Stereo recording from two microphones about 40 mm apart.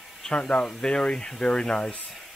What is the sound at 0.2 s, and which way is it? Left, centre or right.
Speech, left.